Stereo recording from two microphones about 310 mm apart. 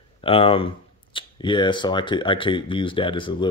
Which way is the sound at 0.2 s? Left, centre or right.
Centre.